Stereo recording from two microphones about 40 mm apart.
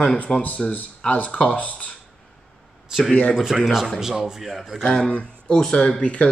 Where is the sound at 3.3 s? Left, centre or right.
Centre.